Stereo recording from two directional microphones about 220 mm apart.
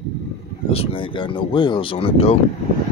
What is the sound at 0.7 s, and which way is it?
Speech, 25° left (ahead or behind).